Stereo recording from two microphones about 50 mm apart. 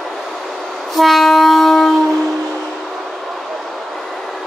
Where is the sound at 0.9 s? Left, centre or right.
Centre.